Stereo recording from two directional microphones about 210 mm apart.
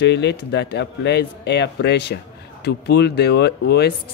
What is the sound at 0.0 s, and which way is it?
Speech, 55° left (ahead or behind).